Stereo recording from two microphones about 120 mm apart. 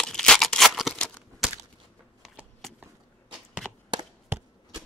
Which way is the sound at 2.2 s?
5° right (ahead or behind).